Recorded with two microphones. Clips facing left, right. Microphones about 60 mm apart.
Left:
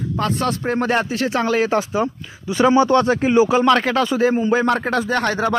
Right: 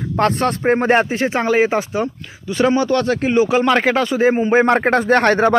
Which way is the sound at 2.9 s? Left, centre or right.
Left.